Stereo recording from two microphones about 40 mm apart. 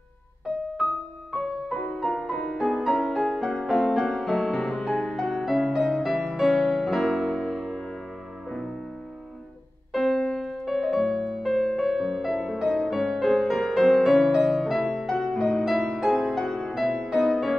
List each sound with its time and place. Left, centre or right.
1.3 s music: centre
4.6 s music: left
4.8 s music: centre
5.4 s music: centre
9.9 s music: centre